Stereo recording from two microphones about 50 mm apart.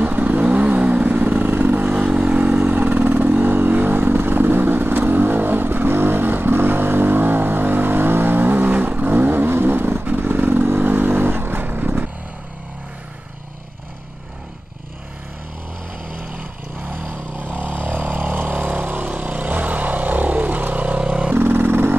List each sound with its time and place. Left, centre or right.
0.0 s vehicle: right
1.9 s vehicle: right
16.9 s vehicle: right
21.4 s vehicle: right